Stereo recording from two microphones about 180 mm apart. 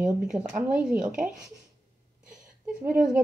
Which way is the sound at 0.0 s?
5° right (ahead or behind).